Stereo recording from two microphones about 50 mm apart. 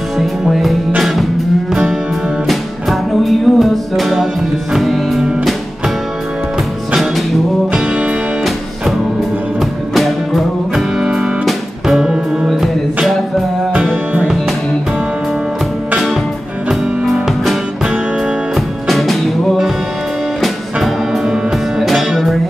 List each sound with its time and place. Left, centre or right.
0.2 s music: centre
9.9 s music: centre
11.0 s music: centre
11.4 s music: centre
17.0 s music: centre
20.3 s music: centre